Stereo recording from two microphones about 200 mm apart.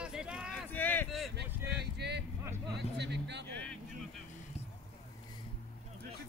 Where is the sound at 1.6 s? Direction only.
55° right (ahead or behind).